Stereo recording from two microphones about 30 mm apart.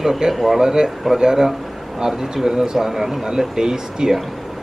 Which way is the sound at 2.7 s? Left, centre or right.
Centre.